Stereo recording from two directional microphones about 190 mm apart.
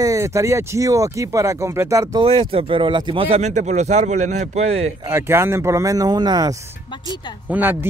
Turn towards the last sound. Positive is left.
turn(degrees=-10)  # may be behind; listen again after turning